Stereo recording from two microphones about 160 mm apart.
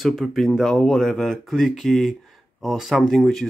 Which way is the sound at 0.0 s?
Centre (ahead or behind).